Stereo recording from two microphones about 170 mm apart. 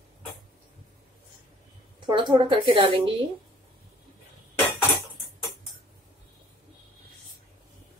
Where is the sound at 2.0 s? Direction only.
25° right (ahead or behind).